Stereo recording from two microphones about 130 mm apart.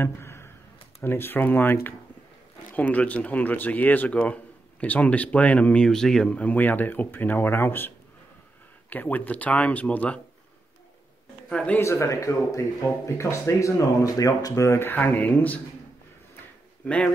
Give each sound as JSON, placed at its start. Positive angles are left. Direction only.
{"t": 0.0, "sound": "a sound", "side_deg": 20}
{"t": 1.0, "sound": "speech", "side_deg": 15}
{"t": 8.9, "sound": "speech", "side_deg": 15}
{"t": 11.4, "sound": "a man's voice", "side_deg": 10}
{"t": 11.8, "sound": "speech", "side_deg": 20}
{"t": 16.8, "sound": "speech", "side_deg": 10}